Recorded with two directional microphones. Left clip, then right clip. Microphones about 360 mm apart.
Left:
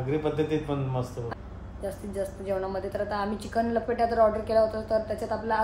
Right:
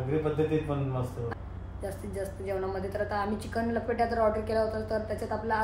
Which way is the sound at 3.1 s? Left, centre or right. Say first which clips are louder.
Left 3 dB; centre.